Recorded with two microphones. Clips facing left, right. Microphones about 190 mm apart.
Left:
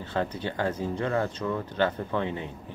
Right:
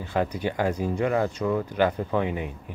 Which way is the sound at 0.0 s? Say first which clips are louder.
Right 3 dB; 10° right (ahead or behind).